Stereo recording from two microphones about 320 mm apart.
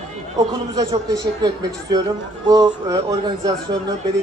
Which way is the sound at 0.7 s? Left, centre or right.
Centre.